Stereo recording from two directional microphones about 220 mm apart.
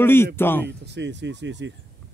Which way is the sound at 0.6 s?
50° right (ahead or behind).